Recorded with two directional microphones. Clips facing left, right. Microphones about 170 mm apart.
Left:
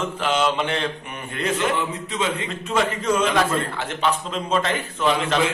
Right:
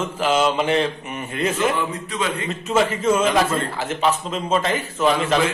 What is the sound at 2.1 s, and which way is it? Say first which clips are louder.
Speech: left 1 dB; 25° left (ahead or behind).